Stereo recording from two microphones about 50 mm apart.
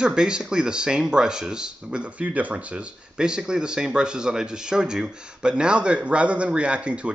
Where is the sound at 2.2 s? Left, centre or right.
Right.